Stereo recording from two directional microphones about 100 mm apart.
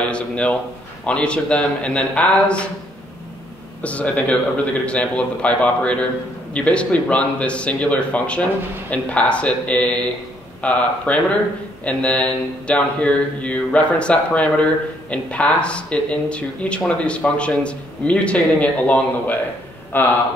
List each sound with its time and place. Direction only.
0.1 s mantra: 10° left (ahead or behind)
3.8 s mantra: 15° left (ahead or behind)
19.9 s speech: 20° left (ahead or behind)